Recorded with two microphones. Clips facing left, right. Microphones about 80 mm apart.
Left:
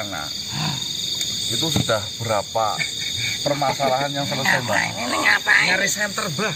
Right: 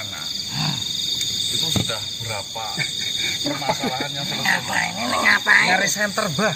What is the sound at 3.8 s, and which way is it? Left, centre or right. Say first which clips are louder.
Speech: left 6 dB; left.